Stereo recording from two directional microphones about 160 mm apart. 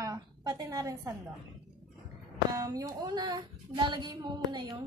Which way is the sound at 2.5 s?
20° right (ahead or behind).